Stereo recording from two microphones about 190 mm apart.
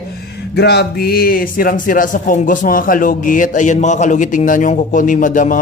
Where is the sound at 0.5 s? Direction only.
60° left (ahead or behind).